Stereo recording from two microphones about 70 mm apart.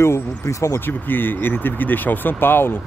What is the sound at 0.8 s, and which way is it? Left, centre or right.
Speech, left.